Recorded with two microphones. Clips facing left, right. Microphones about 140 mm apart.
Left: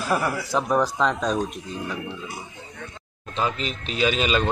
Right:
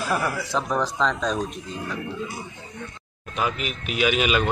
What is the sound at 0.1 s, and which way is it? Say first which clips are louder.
Speech: left 3 dB; centre (ahead or behind).